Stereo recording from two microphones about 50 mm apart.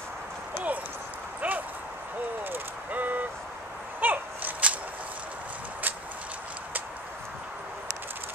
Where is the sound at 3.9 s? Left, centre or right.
Right.